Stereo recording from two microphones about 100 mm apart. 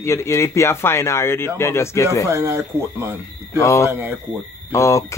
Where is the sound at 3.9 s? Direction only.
25° right (ahead or behind).